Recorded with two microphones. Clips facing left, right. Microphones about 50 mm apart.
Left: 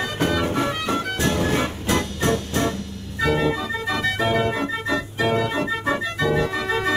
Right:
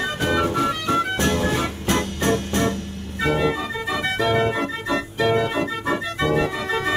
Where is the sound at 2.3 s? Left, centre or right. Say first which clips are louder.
Right 2 dB; right.